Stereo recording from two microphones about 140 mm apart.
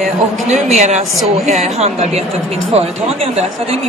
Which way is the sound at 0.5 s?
55° right (ahead or behind).